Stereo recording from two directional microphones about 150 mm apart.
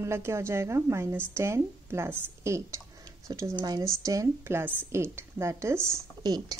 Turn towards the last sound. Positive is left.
turn(degrees=-25)  # may be behind; listen again after turning